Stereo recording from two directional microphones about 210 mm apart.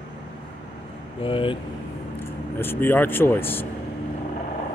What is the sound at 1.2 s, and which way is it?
Speech, 25° left (ahead or behind).